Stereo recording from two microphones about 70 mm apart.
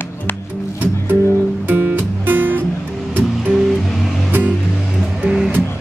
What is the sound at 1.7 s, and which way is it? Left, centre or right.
Music, right.